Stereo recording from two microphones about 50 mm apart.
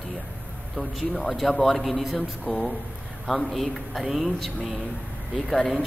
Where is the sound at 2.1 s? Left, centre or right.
Left.